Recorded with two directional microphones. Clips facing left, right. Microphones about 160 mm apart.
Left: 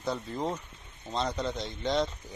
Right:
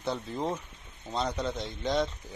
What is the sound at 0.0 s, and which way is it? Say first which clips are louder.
Speech: even; centre (ahead or behind).